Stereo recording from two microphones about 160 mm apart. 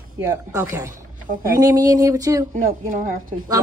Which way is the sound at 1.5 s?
25° right (ahead or behind).